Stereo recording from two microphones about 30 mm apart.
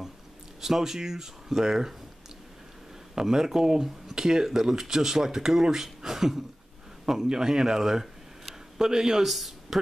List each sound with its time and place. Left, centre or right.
0.6 s speech: centre
3.2 s speech: centre
9.3 s speech: centre